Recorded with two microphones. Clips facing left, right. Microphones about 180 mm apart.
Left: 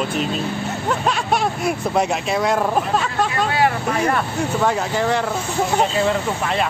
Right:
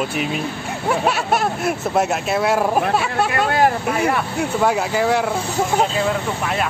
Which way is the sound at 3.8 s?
10° right (ahead or behind).